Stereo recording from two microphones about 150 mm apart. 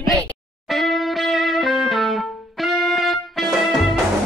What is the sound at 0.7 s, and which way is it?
Music, centre (ahead or behind).